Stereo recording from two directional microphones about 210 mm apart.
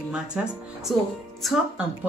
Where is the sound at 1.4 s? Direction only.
Centre (ahead or behind).